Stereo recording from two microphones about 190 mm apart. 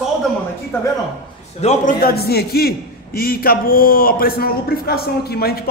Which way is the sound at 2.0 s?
55° left (ahead or behind).